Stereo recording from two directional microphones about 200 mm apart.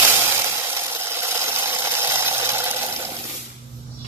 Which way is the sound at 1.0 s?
10° right (ahead or behind).